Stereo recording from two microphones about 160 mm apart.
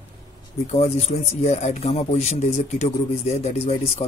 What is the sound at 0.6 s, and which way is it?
A man's voice, 45° left (ahead or behind).